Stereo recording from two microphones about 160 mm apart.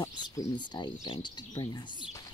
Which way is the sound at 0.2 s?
30° left (ahead or behind).